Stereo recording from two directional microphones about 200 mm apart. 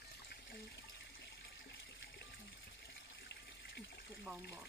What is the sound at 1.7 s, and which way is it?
Water, 55° left (ahead or behind).